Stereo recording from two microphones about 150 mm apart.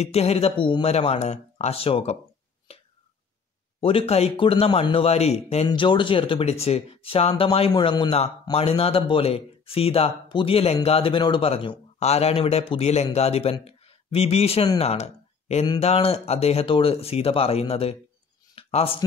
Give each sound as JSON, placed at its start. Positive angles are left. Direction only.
{"t": 0.0, "sound": "a man's voice", "side_deg": 45}
{"t": 0.8, "sound": "a man's voice", "side_deg": 45}
{"t": 2.7, "sound": "whispering", "side_deg": 40}
{"t": 3.8, "sound": "a man's voice", "side_deg": 40}
{"t": 5.7, "sound": "speech", "side_deg": 35}
{"t": 7.7, "sound": "a man's voice", "side_deg": 30}
{"t": 8.5, "sound": "a man's voice", "side_deg": 40}
{"t": 18.5, "sound": "a sound", "side_deg": 40}